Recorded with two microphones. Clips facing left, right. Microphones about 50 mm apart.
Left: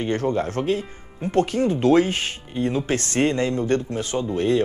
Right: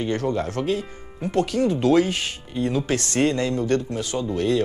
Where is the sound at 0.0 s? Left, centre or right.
Left.